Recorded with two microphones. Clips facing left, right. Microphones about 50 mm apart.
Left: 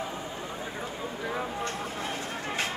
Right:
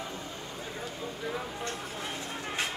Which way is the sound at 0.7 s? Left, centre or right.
Left.